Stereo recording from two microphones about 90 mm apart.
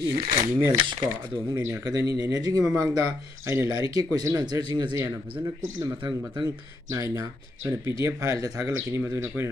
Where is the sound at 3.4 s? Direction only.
30° right (ahead or behind).